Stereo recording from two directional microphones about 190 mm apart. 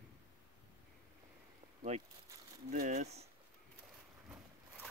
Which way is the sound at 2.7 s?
40° right (ahead or behind).